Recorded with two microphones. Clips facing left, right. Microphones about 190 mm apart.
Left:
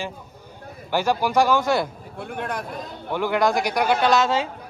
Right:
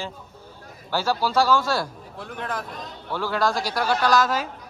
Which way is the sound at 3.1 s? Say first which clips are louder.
Left 3 dB; 15° left (ahead or behind).